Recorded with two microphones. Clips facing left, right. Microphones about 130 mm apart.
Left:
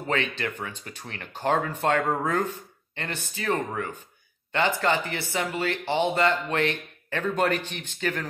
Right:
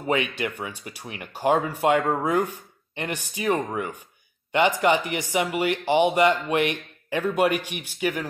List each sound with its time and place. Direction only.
0.0 s speech: 15° right (ahead or behind)